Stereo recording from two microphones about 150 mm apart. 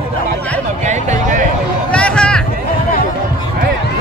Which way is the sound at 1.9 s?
5° left (ahead or behind).